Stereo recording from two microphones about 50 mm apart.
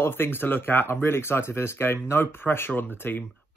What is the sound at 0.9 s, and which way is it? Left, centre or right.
Speech, left.